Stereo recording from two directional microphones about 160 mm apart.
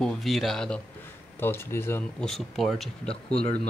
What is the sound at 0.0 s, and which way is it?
Speech, centre (ahead or behind).